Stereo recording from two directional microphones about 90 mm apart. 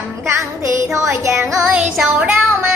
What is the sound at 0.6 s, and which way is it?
Music, 35° right (ahead or behind).